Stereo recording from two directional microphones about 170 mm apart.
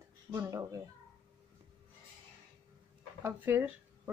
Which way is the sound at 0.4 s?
15° right (ahead or behind).